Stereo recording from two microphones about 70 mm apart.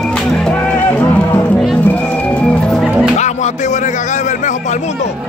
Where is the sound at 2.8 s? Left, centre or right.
Centre.